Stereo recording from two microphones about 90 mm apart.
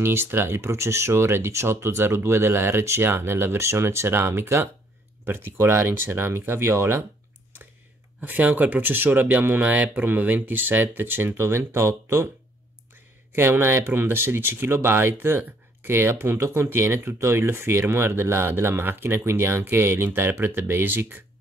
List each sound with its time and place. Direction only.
0.0 s speech: 25° right (ahead or behind)
8.2 s speech: 20° right (ahead or behind)
13.3 s speech: 25° right (ahead or behind)